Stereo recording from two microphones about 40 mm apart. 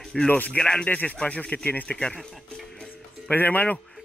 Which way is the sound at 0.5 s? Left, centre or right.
Left.